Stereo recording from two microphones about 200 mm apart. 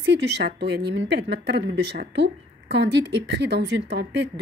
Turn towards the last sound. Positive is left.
turn(degrees=-55)  # may be behind; listen again after turning